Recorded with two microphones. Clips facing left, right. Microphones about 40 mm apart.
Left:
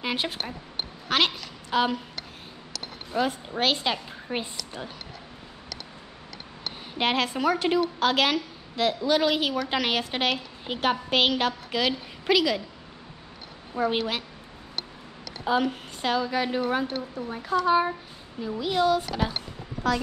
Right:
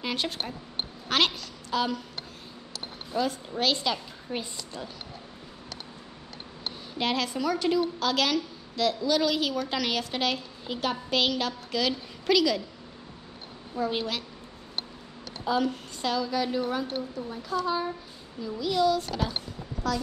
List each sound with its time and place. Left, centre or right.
0.0 s speech: centre
1.0 s a woman's voice: centre
1.7 s a woman's voice: left
3.1 s a woman's voice: left
7.0 s a woman's voice: left
13.7 s a woman's voice: left
15.4 s a woman's voice: left